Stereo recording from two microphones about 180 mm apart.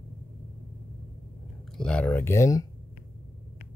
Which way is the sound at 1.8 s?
5° left (ahead or behind).